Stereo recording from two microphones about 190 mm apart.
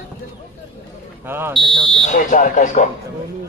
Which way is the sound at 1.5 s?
25° right (ahead or behind).